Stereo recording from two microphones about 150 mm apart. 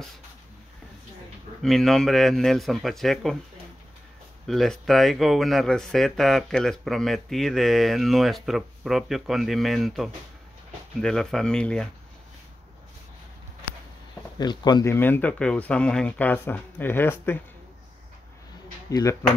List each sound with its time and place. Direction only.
1.6 s speech: centre (ahead or behind)
4.5 s speech: centre (ahead or behind)
14.4 s speech: 30° left (ahead or behind); by 17.4 s 15° left (ahead or behind)
18.9 s speech: 20° left (ahead or behind)